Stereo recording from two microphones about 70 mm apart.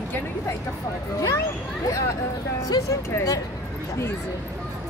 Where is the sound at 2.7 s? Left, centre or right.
Left.